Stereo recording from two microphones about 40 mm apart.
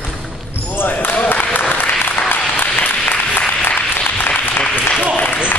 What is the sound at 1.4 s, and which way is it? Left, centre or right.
Applause, left.